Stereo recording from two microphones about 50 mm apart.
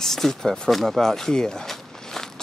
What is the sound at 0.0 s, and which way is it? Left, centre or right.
Speech, centre.